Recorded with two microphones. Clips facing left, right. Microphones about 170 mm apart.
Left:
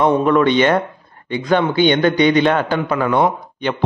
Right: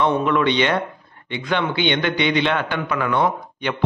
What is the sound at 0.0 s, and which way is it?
A man's voice, 40° left (ahead or behind).